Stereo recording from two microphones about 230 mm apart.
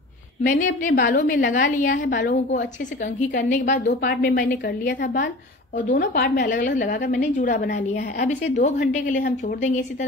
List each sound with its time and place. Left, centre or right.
0.4 s a woman's voice: left
6.6 s a woman's voice: left